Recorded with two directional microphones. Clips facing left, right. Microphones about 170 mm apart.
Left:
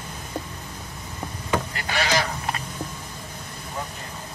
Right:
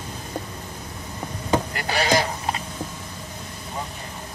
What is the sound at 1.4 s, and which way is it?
Sheep, 35° right (ahead or behind).